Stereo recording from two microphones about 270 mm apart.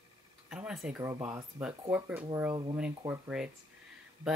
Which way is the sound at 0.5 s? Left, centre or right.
Centre.